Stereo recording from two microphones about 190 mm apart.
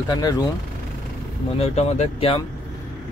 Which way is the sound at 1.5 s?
35° left (ahead or behind).